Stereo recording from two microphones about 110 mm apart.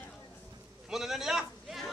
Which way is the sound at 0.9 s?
5° right (ahead or behind).